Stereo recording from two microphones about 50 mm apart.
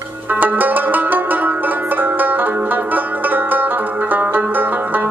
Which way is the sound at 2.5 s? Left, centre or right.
Right.